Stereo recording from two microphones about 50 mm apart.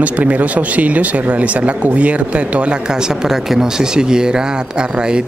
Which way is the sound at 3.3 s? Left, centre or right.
Centre.